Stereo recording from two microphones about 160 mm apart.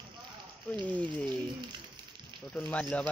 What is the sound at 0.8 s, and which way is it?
Speech, 10° left (ahead or behind).